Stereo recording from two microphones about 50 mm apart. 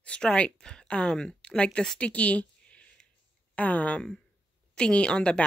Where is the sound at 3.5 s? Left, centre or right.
Left.